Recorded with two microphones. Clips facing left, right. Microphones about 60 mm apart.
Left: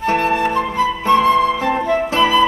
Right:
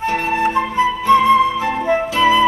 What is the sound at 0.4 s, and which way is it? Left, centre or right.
Flute, right.